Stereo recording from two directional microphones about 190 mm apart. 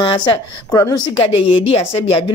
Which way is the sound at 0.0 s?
25° left (ahead or behind).